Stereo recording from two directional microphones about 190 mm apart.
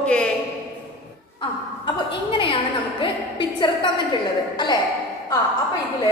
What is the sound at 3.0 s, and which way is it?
Speech, 25° left (ahead or behind).